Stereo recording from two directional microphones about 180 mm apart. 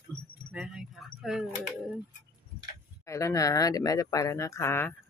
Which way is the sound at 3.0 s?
15° left (ahead or behind).